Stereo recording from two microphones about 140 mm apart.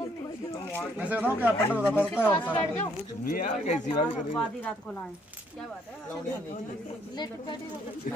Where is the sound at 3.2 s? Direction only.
90° left.